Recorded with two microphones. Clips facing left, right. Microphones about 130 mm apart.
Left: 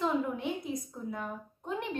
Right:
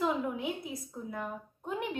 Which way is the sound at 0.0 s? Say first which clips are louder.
Left 1 dB; centre (ahead or behind).